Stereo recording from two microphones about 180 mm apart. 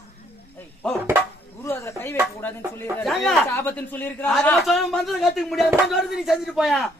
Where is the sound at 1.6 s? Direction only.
15° left (ahead or behind).